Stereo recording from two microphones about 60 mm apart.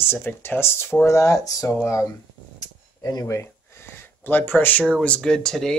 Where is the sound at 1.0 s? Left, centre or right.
Left.